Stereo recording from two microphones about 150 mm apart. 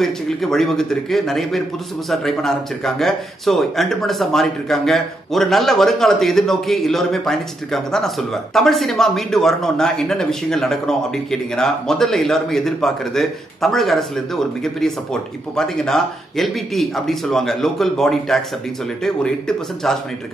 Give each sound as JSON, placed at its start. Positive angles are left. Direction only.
{"t": 0.0, "sound": "speech", "side_deg": 0}